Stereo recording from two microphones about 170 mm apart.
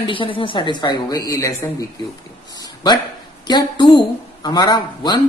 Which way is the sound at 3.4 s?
25° left (ahead or behind).